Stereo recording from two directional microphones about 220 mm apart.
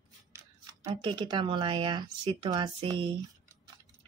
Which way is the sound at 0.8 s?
20° right (ahead or behind).